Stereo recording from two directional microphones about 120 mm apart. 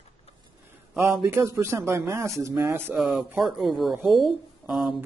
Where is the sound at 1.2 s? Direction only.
20° right (ahead or behind).